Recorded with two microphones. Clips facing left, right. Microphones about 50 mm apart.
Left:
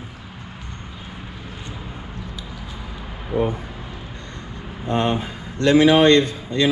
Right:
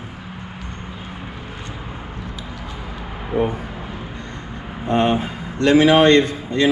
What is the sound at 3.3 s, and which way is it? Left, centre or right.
Speech, right.